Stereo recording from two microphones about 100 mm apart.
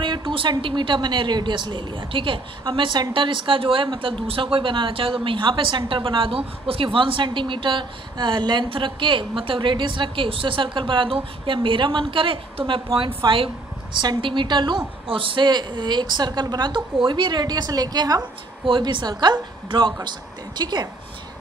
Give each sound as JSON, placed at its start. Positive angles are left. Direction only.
{"t": 0.0, "sound": "a woman's voice", "side_deg": -55}
{"t": 18.7, "sound": "a woman's voice", "side_deg": -55}